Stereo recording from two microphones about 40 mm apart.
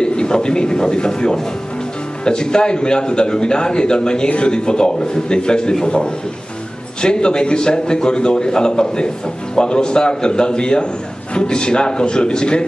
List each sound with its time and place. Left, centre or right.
0.0 s a man's voice: left